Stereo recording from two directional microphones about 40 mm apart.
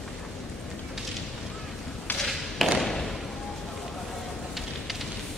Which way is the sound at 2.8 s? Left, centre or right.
Centre.